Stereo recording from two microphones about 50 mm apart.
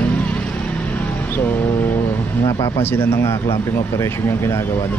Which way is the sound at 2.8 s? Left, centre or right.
Left.